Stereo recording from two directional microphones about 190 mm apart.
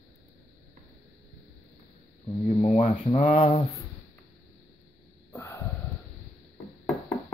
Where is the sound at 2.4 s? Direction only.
30° left (ahead or behind).